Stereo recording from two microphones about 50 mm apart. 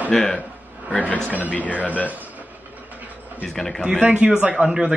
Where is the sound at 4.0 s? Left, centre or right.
Right.